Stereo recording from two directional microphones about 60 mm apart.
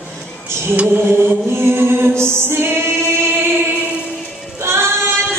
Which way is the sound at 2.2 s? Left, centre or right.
Right.